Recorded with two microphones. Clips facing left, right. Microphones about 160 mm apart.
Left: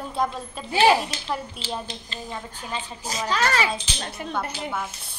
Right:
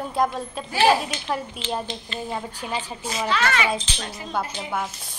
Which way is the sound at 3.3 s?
40° left (ahead or behind).